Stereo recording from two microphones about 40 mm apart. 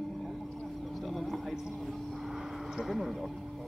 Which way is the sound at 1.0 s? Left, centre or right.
Centre.